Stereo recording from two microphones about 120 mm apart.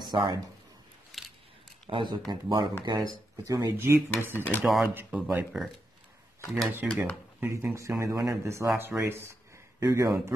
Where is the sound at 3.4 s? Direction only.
25° right (ahead or behind).